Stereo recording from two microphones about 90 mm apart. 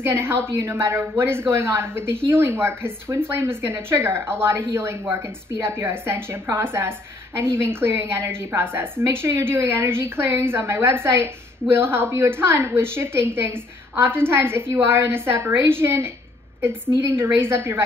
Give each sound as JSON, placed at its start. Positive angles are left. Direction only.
{"t": 0.0, "sound": "a woman's voice", "side_deg": -25}